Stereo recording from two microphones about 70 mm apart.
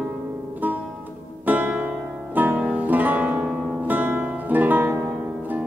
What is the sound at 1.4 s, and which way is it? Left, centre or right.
Music, right.